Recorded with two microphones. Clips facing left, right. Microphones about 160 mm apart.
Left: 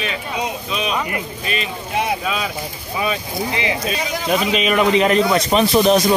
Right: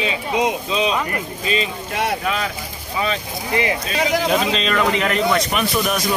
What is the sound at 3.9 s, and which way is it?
Speech, 90° right.